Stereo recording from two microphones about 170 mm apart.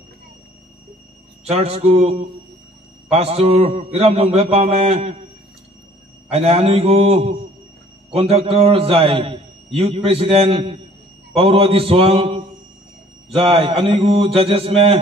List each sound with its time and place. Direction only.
1.5 s a man's voice: 40° right (ahead or behind)
6.3 s a man's voice: 35° right (ahead or behind)